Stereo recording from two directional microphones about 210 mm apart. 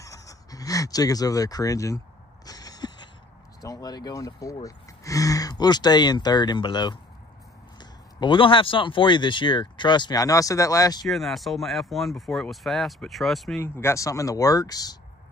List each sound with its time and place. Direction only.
0.0 s a sound: 15° left (ahead or behind)
3.6 s speech: 20° left (ahead or behind)
8.2 s speech: 25° left (ahead or behind)
11.1 s speech: centre (ahead or behind); by 15.0 s 15° left (ahead or behind)